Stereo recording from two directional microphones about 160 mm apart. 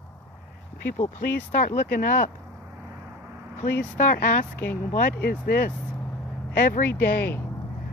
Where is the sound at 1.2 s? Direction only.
65° left (ahead or behind).